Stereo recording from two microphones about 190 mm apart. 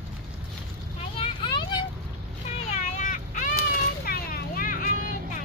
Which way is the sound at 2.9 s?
40° left (ahead or behind).